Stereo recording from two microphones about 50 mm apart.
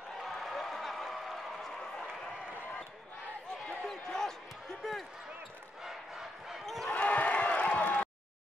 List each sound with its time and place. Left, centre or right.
0.2 s a sound: centre
3.6 s basketball bounce: centre
5.9 s battle cry: centre
6.6 s basketball bounce: centre
6.9 s crowd: left